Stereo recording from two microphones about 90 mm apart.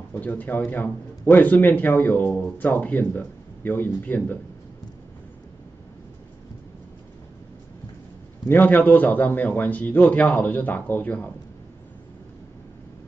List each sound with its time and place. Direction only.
0.1 s a man's voice: 20° left (ahead or behind)
8.5 s a man's voice: 20° left (ahead or behind)